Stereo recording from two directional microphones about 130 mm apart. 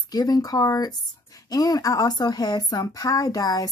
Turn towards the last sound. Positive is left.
turn(degrees=30)  # may be behind; listen again after turning